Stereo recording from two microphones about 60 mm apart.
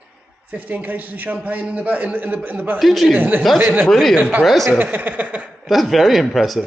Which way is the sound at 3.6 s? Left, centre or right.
Right.